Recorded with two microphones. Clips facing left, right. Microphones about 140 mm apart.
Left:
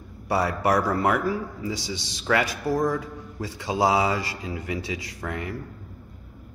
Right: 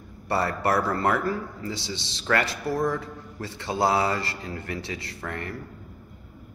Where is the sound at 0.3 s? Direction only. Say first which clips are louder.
Left 2 dB; 10° left (ahead or behind).